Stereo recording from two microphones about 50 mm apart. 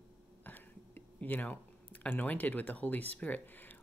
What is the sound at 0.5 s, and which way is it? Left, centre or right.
Speech, left.